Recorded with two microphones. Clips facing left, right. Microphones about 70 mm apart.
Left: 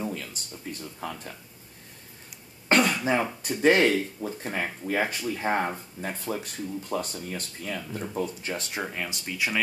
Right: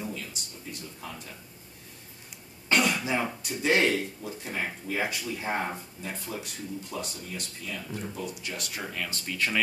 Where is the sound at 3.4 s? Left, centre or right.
Left.